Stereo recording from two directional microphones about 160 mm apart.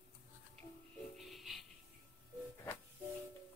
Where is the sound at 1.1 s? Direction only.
Centre (ahead or behind).